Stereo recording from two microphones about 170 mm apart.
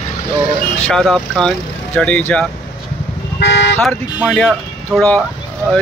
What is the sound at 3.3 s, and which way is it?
Speech, 90° left.